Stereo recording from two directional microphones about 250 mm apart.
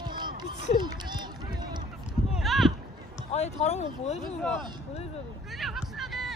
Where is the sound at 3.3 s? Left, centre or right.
Left.